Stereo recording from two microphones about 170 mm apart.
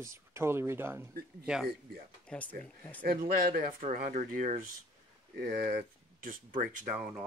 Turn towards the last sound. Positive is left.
turn(degrees=-50)  # may be behind; listen again after turning